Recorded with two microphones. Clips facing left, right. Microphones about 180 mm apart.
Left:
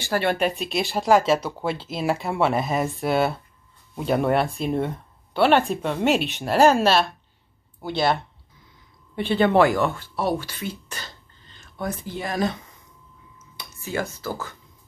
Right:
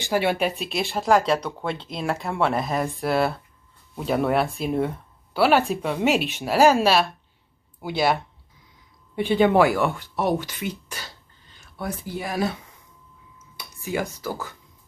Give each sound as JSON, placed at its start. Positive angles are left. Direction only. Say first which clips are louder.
{"t": 0.0, "sound": "speech", "louder": "even", "side_deg": -10}